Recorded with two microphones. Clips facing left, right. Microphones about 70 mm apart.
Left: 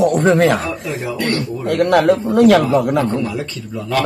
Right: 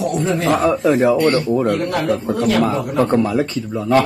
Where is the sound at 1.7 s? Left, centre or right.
Left.